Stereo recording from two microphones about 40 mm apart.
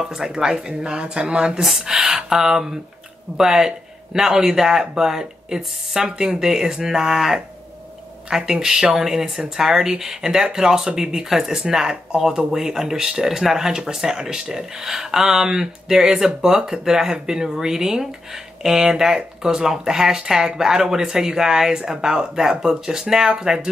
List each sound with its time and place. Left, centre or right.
0.0 s speech: centre
1.6 s speech: centre